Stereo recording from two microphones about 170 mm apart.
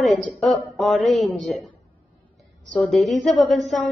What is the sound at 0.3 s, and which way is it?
A woman's voice, centre (ahead or behind).